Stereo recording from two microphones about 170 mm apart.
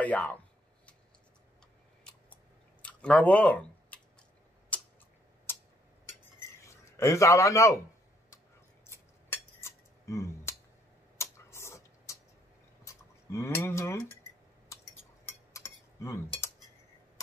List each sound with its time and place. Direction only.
0.0 s speech: 10° left (ahead or behind)
2.1 s scissors: 5° left (ahead or behind)
2.8 s a sound: 5° left (ahead or behind)
5.5 s tick-tock: 15° left (ahead or behind)
6.6 s speech: 15° left (ahead or behind)
8.8 s cutlery: 15° left (ahead or behind)
11.1 s tick-tock: 15° left (ahead or behind)
12.8 s speech: 15° left (ahead or behind)
15.2 s cutlery: 20° left (ahead or behind)